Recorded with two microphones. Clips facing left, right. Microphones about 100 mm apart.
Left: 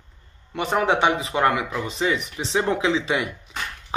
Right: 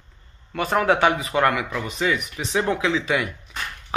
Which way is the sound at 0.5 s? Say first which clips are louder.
Right 1 dB; 20° left (ahead or behind).